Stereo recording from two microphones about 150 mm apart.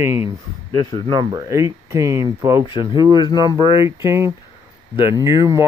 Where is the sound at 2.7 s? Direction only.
30° left (ahead or behind).